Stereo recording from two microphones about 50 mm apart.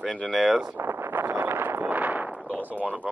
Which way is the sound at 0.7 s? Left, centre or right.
Right.